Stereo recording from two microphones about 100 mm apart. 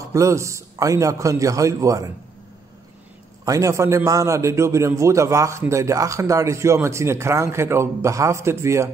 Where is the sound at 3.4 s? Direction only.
35° right (ahead or behind).